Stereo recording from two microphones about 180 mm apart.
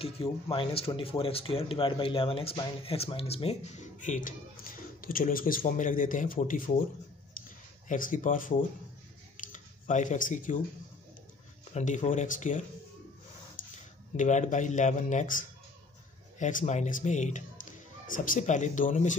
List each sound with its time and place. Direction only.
0.0 s speech: 30° left (ahead or behind); by 6.8 s 50° left (ahead or behind)
7.9 s speech: 45° left (ahead or behind)
11.7 s speech: 40° left (ahead or behind)
14.1 s speech: 40° left (ahead or behind)
16.3 s speech: 45° left (ahead or behind)